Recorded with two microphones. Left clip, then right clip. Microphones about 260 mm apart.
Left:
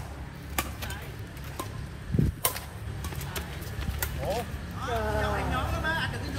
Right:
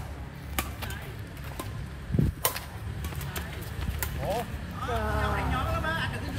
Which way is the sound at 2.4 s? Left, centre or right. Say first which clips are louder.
Right 1 dB; centre.